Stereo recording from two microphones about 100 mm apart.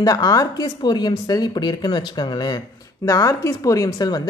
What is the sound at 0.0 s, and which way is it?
A woman's voice, 40° left (ahead or behind).